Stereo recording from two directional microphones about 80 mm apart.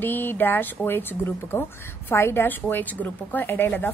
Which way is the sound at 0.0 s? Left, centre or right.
Left.